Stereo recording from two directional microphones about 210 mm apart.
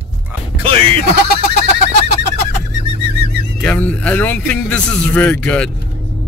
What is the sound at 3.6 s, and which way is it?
Speech, 5° left (ahead or behind).